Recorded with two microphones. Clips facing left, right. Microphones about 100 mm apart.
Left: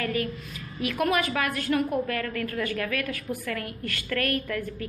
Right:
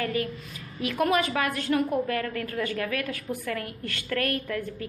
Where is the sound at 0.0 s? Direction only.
30° right (ahead or behind).